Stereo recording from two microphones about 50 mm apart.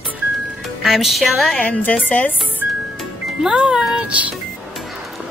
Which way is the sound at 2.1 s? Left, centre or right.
Left.